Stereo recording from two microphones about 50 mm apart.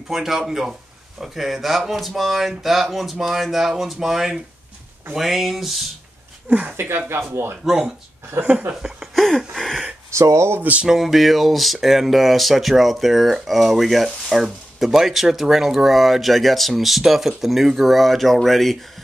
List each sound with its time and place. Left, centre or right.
0.1 s speech: centre
7.1 s speech: right
7.6 s speech: centre
9.1 s a sound: centre
10.1 s speech: right
10.6 s speech: right
10.9 s speech: centre